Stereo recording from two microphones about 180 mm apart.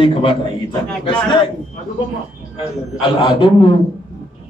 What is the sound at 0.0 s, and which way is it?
A man's voice, 30° left (ahead or behind).